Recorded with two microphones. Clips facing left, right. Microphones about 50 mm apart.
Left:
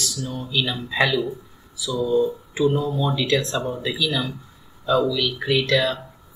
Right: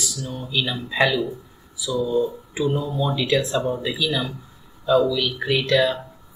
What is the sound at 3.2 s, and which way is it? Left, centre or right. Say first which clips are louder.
Speech: right 1 dB; centre.